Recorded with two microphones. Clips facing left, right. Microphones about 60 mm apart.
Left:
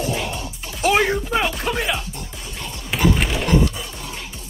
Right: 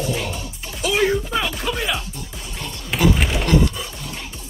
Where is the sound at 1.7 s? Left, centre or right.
Left.